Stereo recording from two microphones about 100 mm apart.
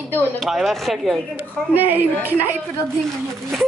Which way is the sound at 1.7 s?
20° right (ahead or behind).